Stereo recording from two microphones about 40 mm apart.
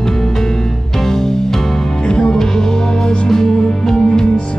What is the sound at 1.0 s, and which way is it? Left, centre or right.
Music, centre.